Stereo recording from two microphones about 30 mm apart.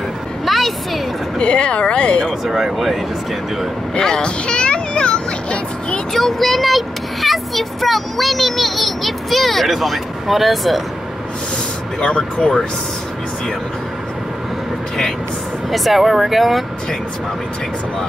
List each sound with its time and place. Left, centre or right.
0.5 s a sound: centre
1.4 s speech: left
4.2 s a sound: left
6.1 s speech: centre
12.0 s speech: left
15.7 s speech: centre